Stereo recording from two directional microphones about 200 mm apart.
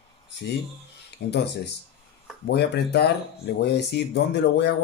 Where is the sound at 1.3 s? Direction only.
55° left (ahead or behind).